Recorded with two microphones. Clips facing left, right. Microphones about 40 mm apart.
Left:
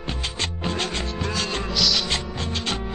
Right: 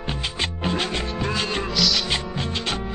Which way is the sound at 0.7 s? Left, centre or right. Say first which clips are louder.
Right 2 dB; centre.